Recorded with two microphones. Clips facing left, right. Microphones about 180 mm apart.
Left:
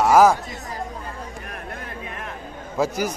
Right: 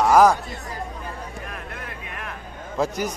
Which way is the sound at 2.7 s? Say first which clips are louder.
Left 1 dB; 5° left (ahead or behind).